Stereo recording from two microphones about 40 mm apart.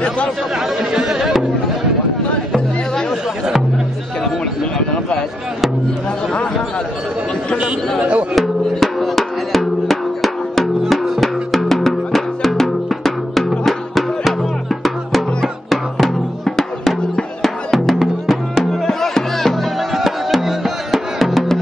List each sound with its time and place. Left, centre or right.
0.7 s chatter: centre
8.0 s speech: right
8.4 s music: centre
19.9 s music: centre